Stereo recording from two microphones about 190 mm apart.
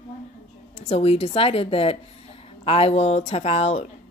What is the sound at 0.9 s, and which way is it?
A woman's voice, 30° left (ahead or behind).